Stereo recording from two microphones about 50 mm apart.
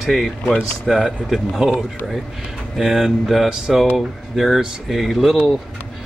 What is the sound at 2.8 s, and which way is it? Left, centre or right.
Speech, centre.